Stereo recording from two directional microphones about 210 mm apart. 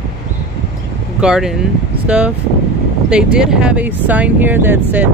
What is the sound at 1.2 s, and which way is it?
Speech, 5° right (ahead or behind).